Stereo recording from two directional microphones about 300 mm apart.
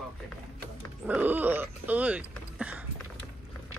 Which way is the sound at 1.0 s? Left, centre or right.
Centre.